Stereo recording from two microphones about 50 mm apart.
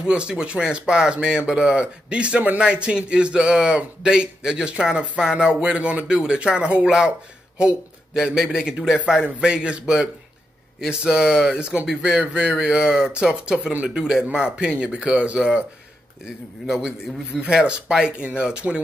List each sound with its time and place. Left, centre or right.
0.0 s a man's voice: centre
16.6 s speech: centre
18.6 s speech: centre